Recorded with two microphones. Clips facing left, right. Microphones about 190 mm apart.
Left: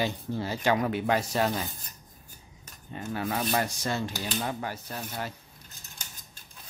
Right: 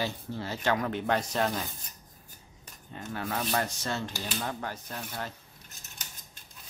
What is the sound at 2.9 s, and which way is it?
Speech, 10° left (ahead or behind).